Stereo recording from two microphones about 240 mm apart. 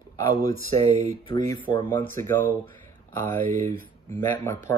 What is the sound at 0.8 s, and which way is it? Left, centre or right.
Speech, right.